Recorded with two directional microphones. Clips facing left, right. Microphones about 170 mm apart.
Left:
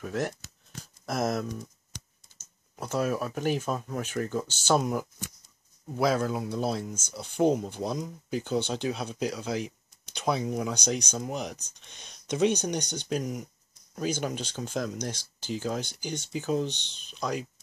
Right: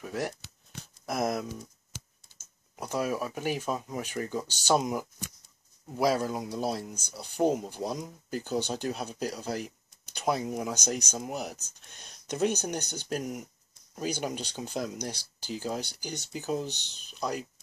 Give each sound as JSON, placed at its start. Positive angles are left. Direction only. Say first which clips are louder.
{"t": 0.0, "sound": "speech", "louder": "left 2 dB", "side_deg": -5}
{"t": 16.7, "sound": "speech", "louder": "left 2 dB", "side_deg": 60}
{"t": 17.0, "sound": "speech", "louder": "left 1 dB", "side_deg": -10}